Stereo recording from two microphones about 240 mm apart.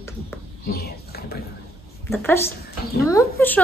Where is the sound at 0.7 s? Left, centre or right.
Left.